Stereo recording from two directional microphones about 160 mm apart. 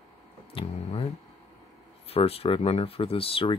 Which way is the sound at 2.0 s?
40° left (ahead or behind).